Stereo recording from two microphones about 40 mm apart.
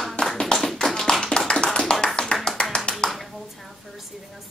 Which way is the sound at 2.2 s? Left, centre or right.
Centre.